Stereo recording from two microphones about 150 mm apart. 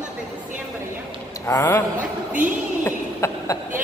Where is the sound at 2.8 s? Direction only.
20° left (ahead or behind).